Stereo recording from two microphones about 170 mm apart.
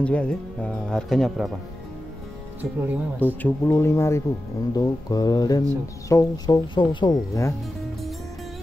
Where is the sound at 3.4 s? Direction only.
10° left (ahead or behind).